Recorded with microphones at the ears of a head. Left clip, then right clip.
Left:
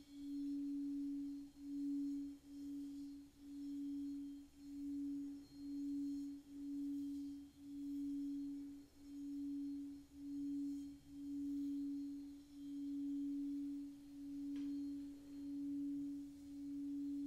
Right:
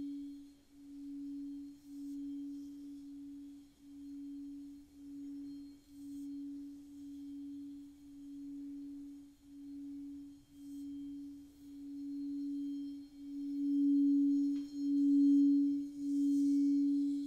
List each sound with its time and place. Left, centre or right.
12.2 s singing bowl: right